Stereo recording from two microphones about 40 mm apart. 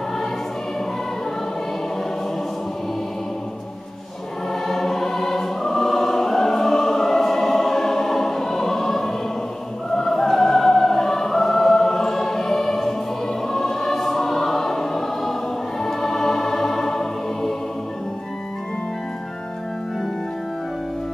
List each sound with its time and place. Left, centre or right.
4.6 s choir: centre
9.9 s music: centre
13.5 s choir: centre
15.8 s music: centre